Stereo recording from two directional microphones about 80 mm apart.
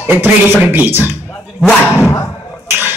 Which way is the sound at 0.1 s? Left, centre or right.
Right.